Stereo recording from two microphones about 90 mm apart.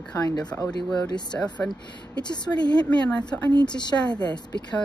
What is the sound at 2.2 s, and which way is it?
Speech, 55° left (ahead or behind).